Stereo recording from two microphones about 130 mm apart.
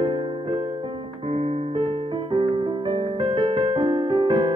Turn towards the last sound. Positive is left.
turn(degrees=-45)  # may be behind; listen again after turning